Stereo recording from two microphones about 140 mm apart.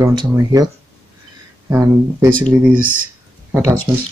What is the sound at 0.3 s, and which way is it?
Speech, 25° right (ahead or behind).